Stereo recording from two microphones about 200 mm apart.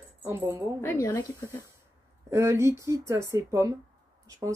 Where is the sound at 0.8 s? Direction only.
15° left (ahead or behind).